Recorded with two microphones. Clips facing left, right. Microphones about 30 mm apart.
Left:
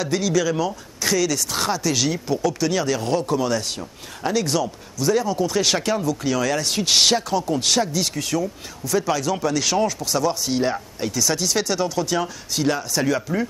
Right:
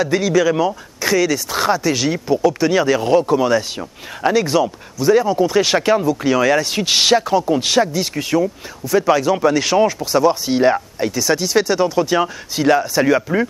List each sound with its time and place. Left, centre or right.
0.0 s a man's voice: centre